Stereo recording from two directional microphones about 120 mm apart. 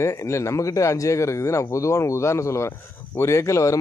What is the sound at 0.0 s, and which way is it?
A man's voice, 25° left (ahead or behind).